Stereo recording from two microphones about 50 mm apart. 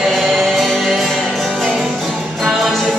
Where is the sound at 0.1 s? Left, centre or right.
Centre.